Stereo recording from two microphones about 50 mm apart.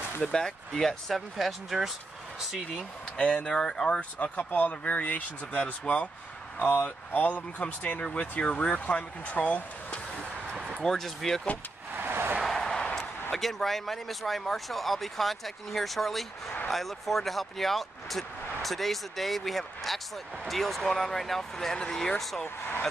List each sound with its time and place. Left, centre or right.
0.2 s speech: centre
3.4 s speech: centre
4.2 s speech: left
10.8 s speech: centre
12.0 s a sound: right
12.4 s a sound: centre
13.3 s speech: centre